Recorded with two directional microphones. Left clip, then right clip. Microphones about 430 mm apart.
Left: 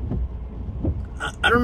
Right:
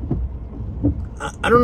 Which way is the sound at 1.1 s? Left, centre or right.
Centre.